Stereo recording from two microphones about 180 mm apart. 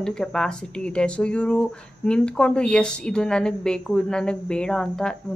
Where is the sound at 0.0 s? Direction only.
5° left (ahead or behind).